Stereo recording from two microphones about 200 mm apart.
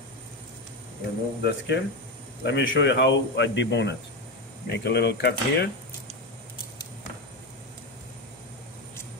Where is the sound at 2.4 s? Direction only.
65° left (ahead or behind).